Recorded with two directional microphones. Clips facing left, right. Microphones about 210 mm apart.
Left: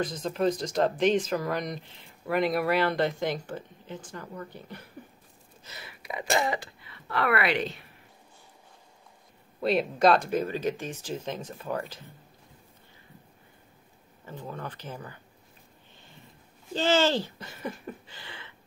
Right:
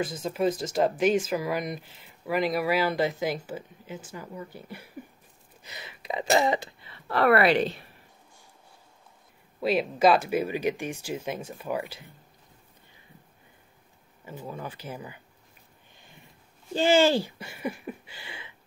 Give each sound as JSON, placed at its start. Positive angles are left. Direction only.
{"t": 0.0, "sound": "speech", "side_deg": -5}
{"t": 5.6, "sound": "gasp", "side_deg": -15}
{"t": 6.3, "sound": "speech", "side_deg": -20}
{"t": 9.6, "sound": "speech", "side_deg": -5}
{"t": 14.2, "sound": "speech", "side_deg": -10}
{"t": 16.7, "sound": "speech", "side_deg": -10}